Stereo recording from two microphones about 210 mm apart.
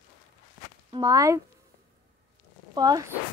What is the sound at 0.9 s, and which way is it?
Speech, 15° right (ahead or behind).